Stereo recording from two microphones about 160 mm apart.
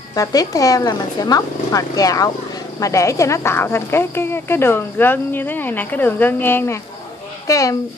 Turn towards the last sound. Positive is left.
turn(degrees=20)  # may be behind; listen again after turning